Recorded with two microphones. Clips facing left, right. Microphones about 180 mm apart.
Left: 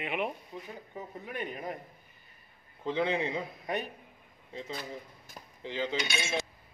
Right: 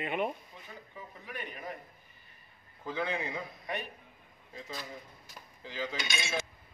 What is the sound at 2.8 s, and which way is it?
Speech, 25° left (ahead or behind).